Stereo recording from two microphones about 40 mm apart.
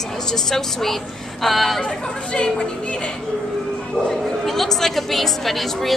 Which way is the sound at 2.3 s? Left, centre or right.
Centre.